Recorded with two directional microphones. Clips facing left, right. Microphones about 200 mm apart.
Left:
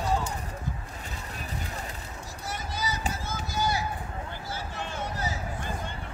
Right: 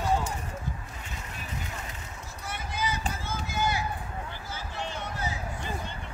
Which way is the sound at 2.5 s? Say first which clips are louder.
Right 1 dB; 40° left (ahead or behind).